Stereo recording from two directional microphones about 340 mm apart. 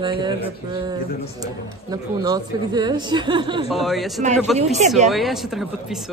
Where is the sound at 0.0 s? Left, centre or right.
Centre.